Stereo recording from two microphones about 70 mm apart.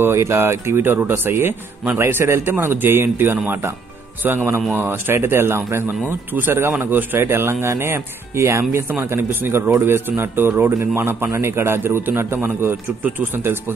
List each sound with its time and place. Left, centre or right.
0.0 s a man's voice: right
4.7 s a man's voice: right